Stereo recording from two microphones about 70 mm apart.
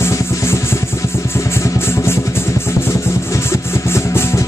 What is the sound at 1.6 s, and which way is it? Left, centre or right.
Music, left.